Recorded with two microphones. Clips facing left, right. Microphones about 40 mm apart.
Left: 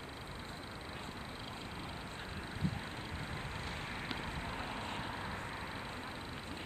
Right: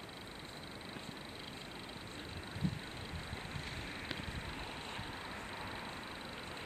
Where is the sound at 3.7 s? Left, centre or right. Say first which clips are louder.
Left 2 dB; left.